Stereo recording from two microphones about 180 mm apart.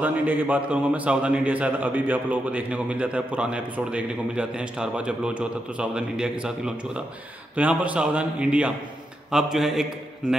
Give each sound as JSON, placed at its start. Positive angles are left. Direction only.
{"t": 0.0, "sound": "a man's voice", "side_deg": -10}